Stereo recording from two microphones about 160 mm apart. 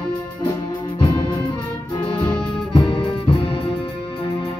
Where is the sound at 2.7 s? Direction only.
30° left (ahead or behind).